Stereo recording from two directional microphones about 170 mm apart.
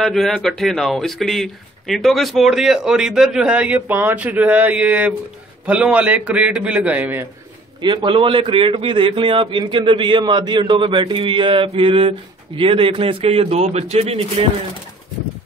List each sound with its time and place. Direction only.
0.0 s a man's voice: centre (ahead or behind)
7.8 s a man's voice: 30° right (ahead or behind)